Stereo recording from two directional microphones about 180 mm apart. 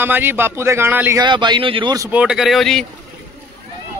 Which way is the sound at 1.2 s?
25° right (ahead or behind).